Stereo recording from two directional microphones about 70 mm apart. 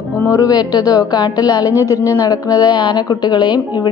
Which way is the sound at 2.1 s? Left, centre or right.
Left.